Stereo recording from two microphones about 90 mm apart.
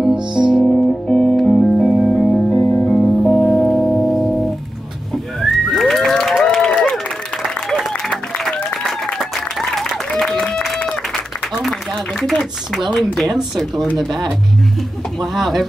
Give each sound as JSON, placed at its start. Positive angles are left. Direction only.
{"t": 0.5, "sound": "music", "side_deg": -5}
{"t": 1.0, "sound": "music", "side_deg": 5}
{"t": 2.6, "sound": "music", "side_deg": 20}
{"t": 2.9, "sound": "music", "side_deg": 5}
{"t": 5.1, "sound": "a sound", "side_deg": 0}
{"t": 7.4, "sound": "applause", "side_deg": 0}
{"t": 12.4, "sound": "a sound", "side_deg": -5}
{"t": 13.2, "sound": "speech", "side_deg": 0}